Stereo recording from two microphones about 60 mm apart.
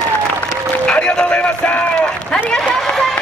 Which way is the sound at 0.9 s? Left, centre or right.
Centre.